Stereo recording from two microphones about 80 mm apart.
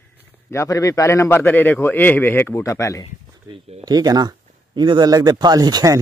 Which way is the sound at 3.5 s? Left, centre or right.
Right.